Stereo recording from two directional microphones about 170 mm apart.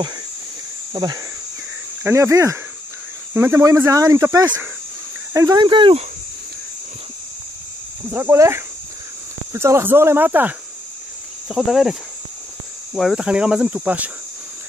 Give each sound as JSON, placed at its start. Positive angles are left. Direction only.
{"t": 0.9, "sound": "speech", "side_deg": -20}
{"t": 8.1, "sound": "speech", "side_deg": -15}